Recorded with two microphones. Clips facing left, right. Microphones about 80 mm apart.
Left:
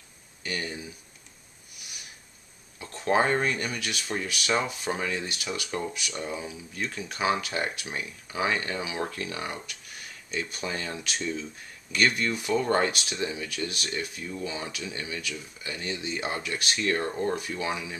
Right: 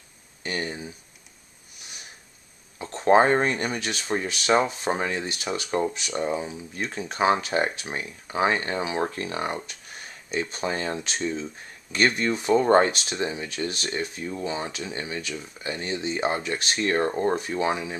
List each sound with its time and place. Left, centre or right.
0.4 s speech: right
2.8 s speech: right